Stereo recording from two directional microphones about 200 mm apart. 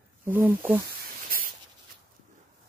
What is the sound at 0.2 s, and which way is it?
Speech, 10° right (ahead or behind).